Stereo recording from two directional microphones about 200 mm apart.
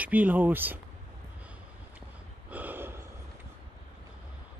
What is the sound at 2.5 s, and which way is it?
Gasp, 10° right (ahead or behind).